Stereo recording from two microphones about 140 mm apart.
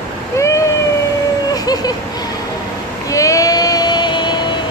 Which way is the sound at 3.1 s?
25° left (ahead or behind).